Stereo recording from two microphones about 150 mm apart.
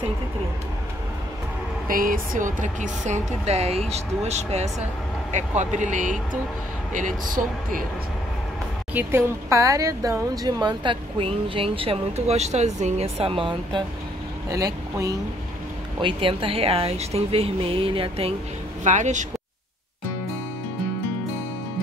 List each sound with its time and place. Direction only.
1.9 s speech: 70° right (ahead or behind)
8.9 s speech: 20° right (ahead or behind); by 13.8 s 35° right (ahead or behind)
14.5 s speech: 20° right (ahead or behind)
16.0 s speech: 35° right (ahead or behind)
18.9 s speech: 55° right (ahead or behind)